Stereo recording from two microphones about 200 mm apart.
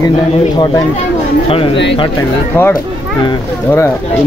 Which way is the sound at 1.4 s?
30° left (ahead or behind).